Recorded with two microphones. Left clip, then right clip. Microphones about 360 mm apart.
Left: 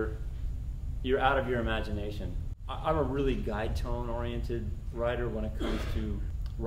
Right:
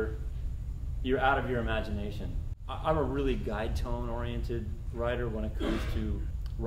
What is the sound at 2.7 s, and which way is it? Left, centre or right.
Speech, centre.